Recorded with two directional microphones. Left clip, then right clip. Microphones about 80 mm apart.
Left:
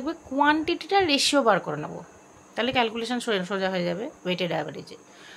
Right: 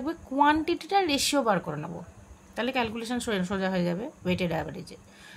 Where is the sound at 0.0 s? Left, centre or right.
Right.